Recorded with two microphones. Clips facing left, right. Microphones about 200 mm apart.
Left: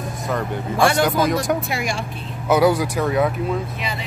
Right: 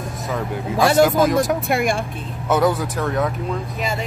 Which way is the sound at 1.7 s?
55° right (ahead or behind).